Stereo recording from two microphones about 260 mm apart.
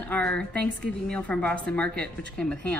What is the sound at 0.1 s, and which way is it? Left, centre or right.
A woman's voice, centre.